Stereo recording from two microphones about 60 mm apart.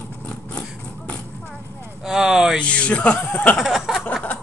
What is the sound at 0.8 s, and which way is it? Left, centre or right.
Music, left.